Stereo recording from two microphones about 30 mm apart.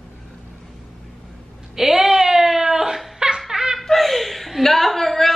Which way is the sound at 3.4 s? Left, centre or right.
Centre.